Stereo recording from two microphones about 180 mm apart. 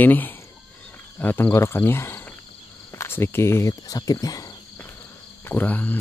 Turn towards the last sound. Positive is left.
turn(degrees=10)  # may be behind; listen again after turning